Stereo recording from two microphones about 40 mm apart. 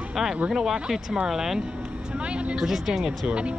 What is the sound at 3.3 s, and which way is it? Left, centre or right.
Speech, right.